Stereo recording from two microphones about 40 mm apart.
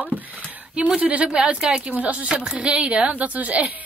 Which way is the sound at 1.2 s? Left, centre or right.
Centre.